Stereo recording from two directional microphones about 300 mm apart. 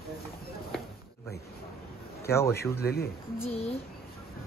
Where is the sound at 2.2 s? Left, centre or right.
Centre.